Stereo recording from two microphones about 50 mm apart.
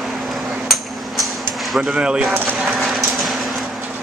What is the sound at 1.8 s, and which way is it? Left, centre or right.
Speech, right.